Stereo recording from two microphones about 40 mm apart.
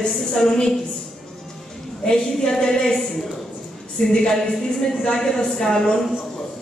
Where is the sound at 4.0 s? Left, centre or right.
Left.